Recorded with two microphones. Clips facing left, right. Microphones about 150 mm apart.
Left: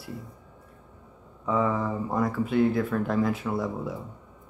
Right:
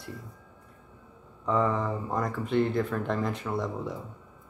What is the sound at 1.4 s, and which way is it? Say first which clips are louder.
Speech: left 1 dB; 5° left (ahead or behind).